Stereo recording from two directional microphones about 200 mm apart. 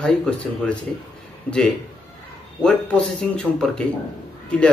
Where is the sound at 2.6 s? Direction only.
5° left (ahead or behind).